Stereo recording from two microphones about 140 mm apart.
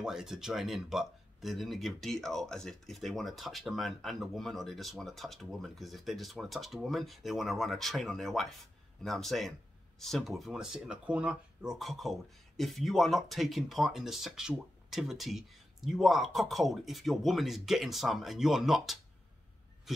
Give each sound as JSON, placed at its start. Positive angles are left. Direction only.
{"t": 0.0, "sound": "speech", "side_deg": -5}